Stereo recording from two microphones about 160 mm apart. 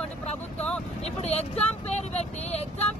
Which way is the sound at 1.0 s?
40° left (ahead or behind).